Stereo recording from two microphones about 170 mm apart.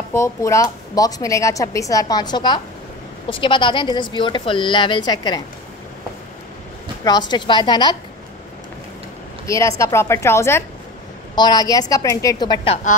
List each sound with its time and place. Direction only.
0.1 s speech: 15° left (ahead or behind)
7.1 s speech: 25° left (ahead or behind)
9.5 s a woman's voice: 15° left (ahead or behind)